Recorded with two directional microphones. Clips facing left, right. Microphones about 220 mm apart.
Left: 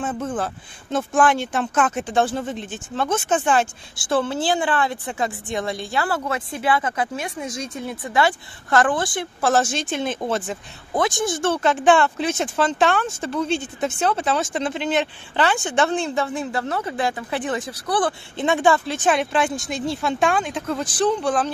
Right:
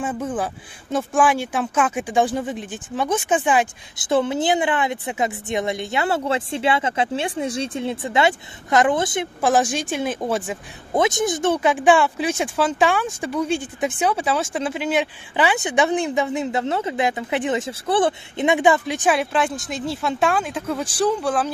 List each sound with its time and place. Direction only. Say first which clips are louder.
0.0 s a woman's voice: right 1 dB; 10° right (ahead or behind)
10.9 s speech: right 2 dB; 20° right (ahead or behind)